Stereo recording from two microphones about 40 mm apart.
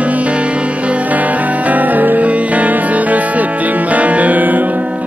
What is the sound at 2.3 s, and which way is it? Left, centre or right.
Music, right.